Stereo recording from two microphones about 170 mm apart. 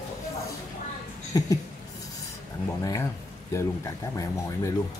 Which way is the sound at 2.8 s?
20° left (ahead or behind).